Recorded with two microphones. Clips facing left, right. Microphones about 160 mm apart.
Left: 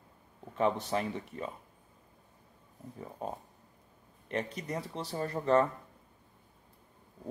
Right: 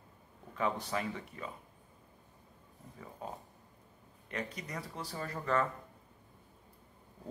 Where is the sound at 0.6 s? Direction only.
25° left (ahead or behind).